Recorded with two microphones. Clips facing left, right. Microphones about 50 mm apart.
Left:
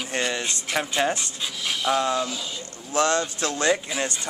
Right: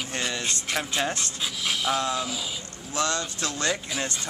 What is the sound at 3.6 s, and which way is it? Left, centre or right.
Speech, centre.